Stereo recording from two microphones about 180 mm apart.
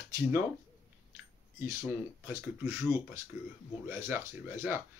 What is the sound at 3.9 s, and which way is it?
Speech, 15° right (ahead or behind).